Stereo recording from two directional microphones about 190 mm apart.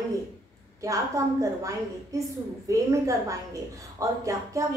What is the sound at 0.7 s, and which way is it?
A woman's voice, 15° right (ahead or behind).